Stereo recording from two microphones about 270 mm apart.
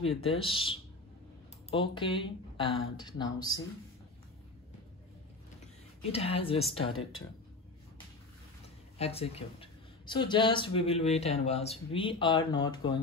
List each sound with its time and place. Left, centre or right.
0.0 s speech: left
6.1 s speech: left
8.9 s speech: left